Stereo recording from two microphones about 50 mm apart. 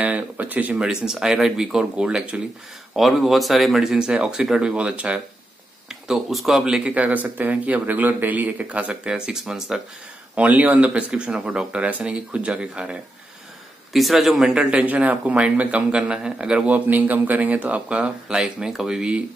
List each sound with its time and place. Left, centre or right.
0.0 s speech: right
0.7 s speech: centre
3.0 s speech: centre; by 5.2 s right
5.9 s a sound: centre
6.3 s speech: centre
6.8 s speech: right
9.0 s speech: centre
10.3 s speech: right
13.9 s speech: centre
14.5 s speech: centre
14.8 s speech: right
15.9 s speech: centre
16.6 s speech: right; by 19.2 s centre